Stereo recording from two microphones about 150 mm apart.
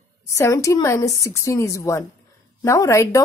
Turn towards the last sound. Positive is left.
turn(degrees=20)  # may be behind; listen again after turning